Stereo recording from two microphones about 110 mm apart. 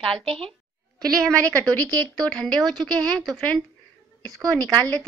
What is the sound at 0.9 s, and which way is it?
A woman's voice, 5° left (ahead or behind).